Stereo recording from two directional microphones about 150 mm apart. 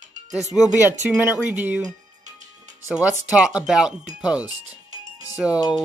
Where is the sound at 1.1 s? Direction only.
10° right (ahead or behind).